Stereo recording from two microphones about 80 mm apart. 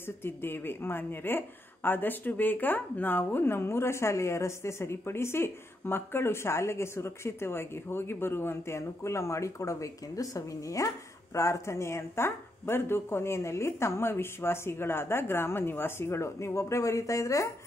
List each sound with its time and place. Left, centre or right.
0.0 s a woman's voice: left